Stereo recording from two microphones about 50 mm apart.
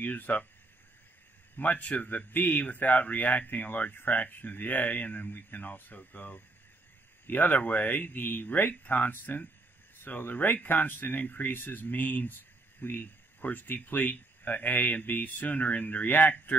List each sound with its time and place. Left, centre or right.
0.0 s speech: left
1.6 s speech: left